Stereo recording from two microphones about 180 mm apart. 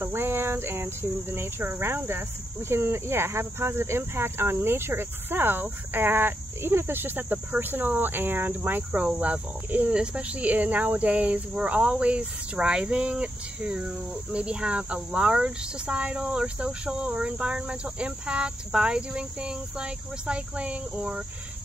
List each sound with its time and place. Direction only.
0.0 s speech: 10° right (ahead or behind)